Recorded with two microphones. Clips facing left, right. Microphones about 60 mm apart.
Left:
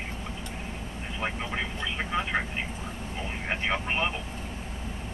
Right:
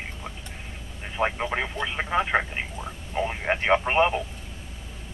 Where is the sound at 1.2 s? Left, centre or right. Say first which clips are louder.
Right 6 dB; right.